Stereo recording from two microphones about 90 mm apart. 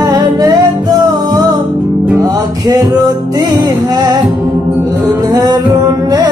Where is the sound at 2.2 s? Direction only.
40° right (ahead or behind).